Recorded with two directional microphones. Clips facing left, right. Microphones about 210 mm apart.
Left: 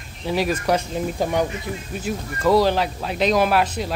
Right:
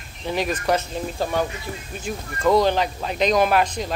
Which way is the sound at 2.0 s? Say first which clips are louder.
Even; 5° left (ahead or behind).